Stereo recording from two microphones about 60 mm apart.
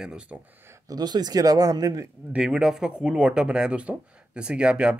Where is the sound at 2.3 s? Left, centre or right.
Centre.